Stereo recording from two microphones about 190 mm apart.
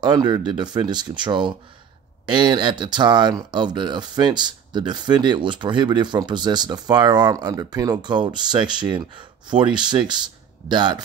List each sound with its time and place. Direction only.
0.0 s speech: 25° right (ahead or behind)